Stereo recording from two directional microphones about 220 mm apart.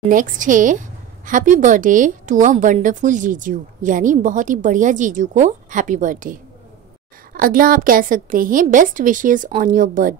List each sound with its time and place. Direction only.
0.1 s a woman's voice: 35° right (ahead or behind)
7.3 s a woman's voice: 40° right (ahead or behind)